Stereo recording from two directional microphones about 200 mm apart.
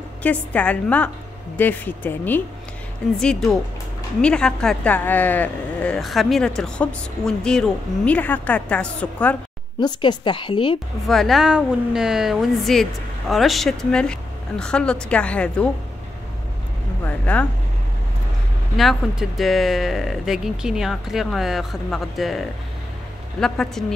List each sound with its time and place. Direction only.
0.2 s a woman's voice: 5° left (ahead or behind)
9.8 s a woman's voice: 20° left (ahead or behind)
11.1 s speech: centre (ahead or behind)
17.0 s a woman's voice: 5° left (ahead or behind)
18.8 s speech: centre (ahead or behind)
23.4 s speech: centre (ahead or behind)